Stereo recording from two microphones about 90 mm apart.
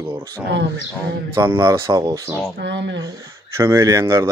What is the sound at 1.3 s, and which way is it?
Speech, 35° right (ahead or behind).